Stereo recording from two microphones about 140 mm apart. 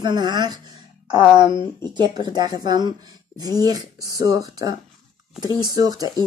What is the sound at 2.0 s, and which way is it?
Speech, 30° right (ahead or behind).